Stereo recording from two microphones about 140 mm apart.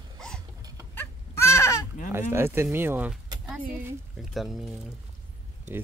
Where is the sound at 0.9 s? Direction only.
15° left (ahead or behind).